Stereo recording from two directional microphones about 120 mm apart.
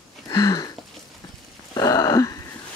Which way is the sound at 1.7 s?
30° left (ahead or behind).